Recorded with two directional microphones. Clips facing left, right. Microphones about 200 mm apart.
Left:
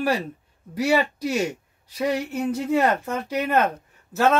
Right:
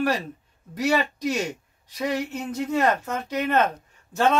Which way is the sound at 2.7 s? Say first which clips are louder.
Left 1 dB; 10° left (ahead or behind).